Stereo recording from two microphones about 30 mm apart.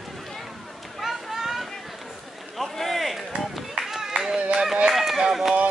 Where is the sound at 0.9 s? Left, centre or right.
Centre.